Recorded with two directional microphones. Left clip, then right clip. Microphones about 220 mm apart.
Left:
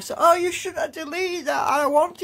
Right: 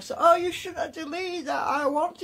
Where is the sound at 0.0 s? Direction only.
25° left (ahead or behind).